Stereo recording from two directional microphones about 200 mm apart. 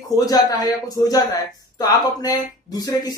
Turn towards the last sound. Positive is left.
turn(degrees=20)  # may be behind; listen again after turning